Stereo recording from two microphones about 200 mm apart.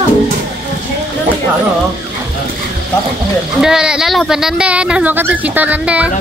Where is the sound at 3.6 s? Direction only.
5° right (ahead or behind).